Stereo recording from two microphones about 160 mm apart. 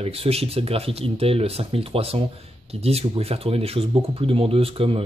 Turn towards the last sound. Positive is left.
turn(degrees=-35)  # may be behind; listen again after turning